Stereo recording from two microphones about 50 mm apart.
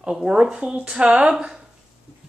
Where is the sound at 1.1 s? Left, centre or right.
Right.